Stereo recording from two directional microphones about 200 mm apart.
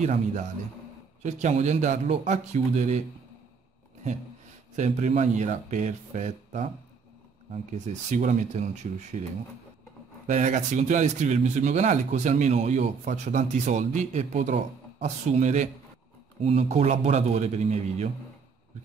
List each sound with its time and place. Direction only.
0.0 s speech: 35° right (ahead or behind)
4.7 s speech: 35° right (ahead or behind)
7.7 s speech: 35° right (ahead or behind)